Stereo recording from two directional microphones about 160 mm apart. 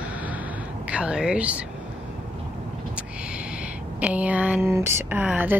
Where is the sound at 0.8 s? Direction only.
5° right (ahead or behind).